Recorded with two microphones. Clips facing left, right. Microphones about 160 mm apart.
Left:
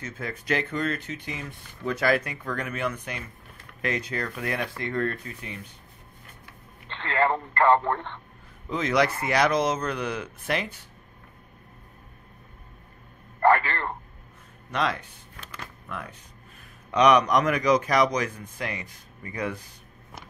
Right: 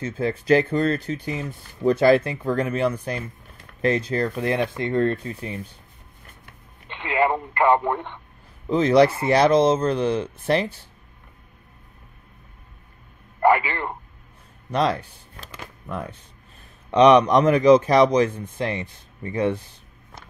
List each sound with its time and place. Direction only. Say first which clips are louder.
0.0 s a man's voice: right 10 dB; 30° right (ahead or behind)
6.9 s speech: right 3 dB; 15° right (ahead or behind)
8.6 s a man's voice: right 8 dB; 30° right (ahead or behind)
13.4 s speech: right 2 dB; 15° right (ahead or behind)
14.7 s a man's voice: right 6 dB; 35° right (ahead or behind)